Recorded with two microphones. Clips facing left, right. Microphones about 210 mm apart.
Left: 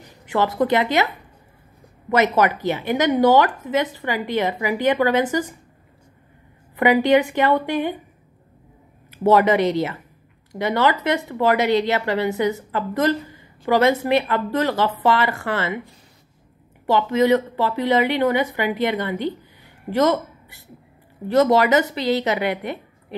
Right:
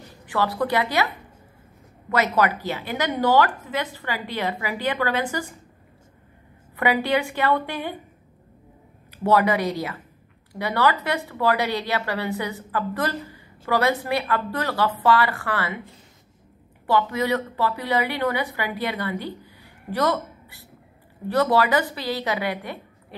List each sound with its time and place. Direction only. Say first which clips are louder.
0.3 s a woman's voice: left 4 dB; 20° left (ahead or behind)
2.0 s a woman's voice: left 4 dB; 20° left (ahead or behind)
6.8 s a woman's voice: left 6 dB; 20° left (ahead or behind)
9.1 s a woman's voice: left 4 dB; 20° left (ahead or behind)
16.8 s a woman's voice: left 5 dB; 20° left (ahead or behind)